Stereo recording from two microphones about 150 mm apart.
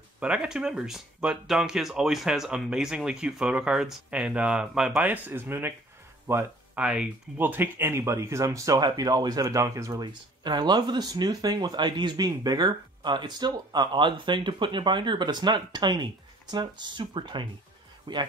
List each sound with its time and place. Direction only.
0.2 s speech: 5° right (ahead or behind); by 18.2 s 30° right (ahead or behind)